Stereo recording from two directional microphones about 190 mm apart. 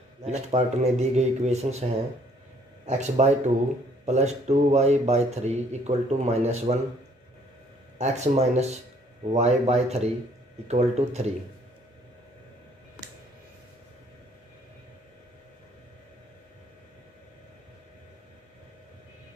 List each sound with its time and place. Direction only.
0.2 s speech: 35° right (ahead or behind)
2.9 s speech: 40° right (ahead or behind)
8.0 s speech: 35° right (ahead or behind)